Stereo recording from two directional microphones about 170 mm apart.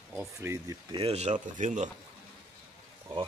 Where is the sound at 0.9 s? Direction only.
35° right (ahead or behind).